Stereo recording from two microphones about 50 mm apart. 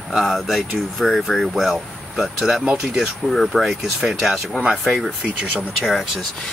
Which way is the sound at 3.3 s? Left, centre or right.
Centre.